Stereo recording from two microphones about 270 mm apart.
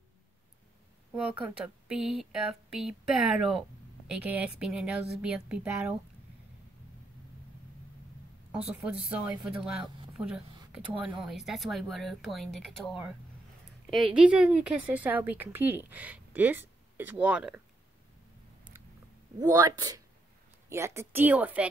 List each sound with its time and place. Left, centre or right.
1.6 s a woman's voice: centre
8.5 s a woman's voice: centre
19.4 s a woman's voice: centre